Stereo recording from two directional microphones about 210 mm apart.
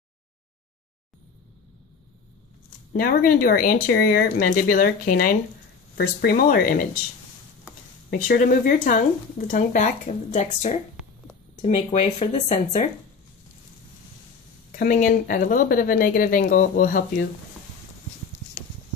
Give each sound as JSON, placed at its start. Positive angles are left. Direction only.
{"t": 3.0, "sound": "speech", "side_deg": 40}
{"t": 8.1, "sound": "speech", "side_deg": 40}
{"t": 14.7, "sound": "speech", "side_deg": 40}